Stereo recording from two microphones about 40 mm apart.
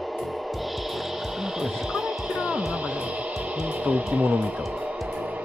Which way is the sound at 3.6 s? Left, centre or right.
Right.